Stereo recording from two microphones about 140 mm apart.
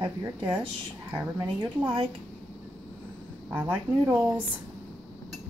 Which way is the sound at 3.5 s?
10° right (ahead or behind).